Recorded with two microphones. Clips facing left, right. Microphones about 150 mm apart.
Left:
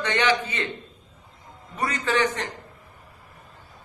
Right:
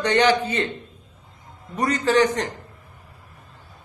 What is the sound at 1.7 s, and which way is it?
Speech, 40° right (ahead or behind).